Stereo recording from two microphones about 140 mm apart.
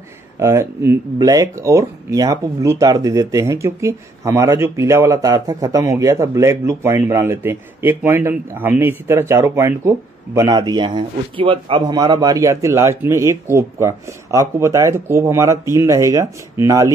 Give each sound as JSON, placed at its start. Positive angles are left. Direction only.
{"t": 0.4, "sound": "speech", "side_deg": -20}